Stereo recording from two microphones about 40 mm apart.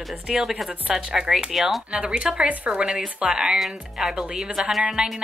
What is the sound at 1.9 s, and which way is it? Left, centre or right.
Speech, right.